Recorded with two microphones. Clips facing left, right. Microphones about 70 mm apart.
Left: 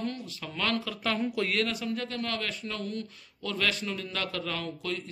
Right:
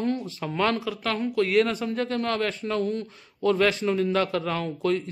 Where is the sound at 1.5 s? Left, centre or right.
Right.